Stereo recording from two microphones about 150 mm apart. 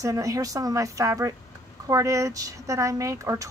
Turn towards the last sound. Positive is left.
turn(degrees=-20)  # may be behind; listen again after turning